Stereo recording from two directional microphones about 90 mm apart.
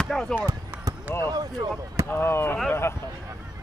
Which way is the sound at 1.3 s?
45° right (ahead or behind).